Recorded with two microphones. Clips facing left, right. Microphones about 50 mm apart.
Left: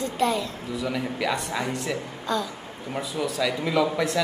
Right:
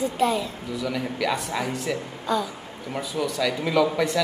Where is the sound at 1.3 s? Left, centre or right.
Centre.